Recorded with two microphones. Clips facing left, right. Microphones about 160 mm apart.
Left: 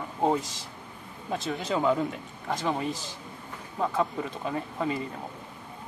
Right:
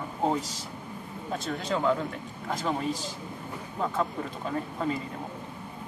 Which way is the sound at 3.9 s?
5° left (ahead or behind).